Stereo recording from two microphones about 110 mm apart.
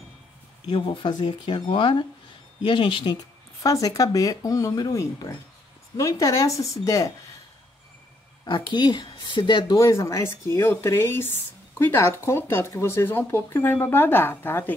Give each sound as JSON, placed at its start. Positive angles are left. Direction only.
{"t": 0.7, "sound": "speech", "side_deg": 50}
{"t": 3.6, "sound": "speech", "side_deg": 30}
{"t": 8.5, "sound": "speech", "side_deg": 50}
{"t": 9.8, "sound": "speech", "side_deg": 30}